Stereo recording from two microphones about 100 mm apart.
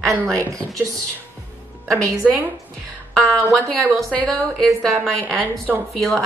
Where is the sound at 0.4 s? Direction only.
30° right (ahead or behind).